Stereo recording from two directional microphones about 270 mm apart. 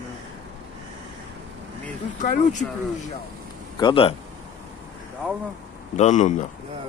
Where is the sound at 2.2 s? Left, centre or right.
Left.